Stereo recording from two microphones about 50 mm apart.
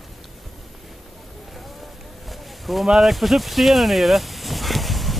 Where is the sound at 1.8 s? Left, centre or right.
Centre.